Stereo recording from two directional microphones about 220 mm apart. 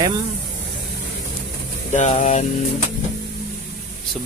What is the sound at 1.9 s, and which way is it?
Speech, 30° left (ahead or behind).